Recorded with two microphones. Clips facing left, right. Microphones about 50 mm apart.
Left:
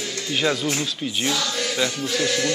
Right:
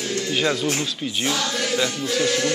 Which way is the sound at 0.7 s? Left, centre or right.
Right.